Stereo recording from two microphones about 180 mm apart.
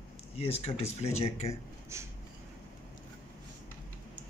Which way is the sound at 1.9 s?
15° right (ahead or behind).